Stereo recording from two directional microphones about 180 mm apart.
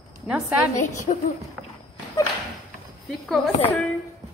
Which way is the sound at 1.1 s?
35° left (ahead or behind).